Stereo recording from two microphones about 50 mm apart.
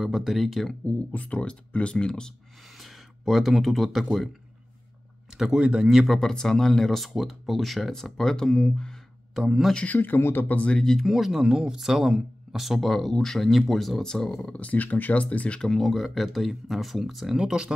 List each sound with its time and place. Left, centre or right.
0.0 s speech: centre
0.8 s speech: left
2.8 s speech: centre
5.3 s a sound: centre
5.6 s speech: centre
6.0 s speech: centre
9.3 s speech: centre
9.8 s speech: left
10.8 s speech: centre
11.1 s speech: centre
14.5 s speech: left
15.6 s speech: centre
17.4 s speech: centre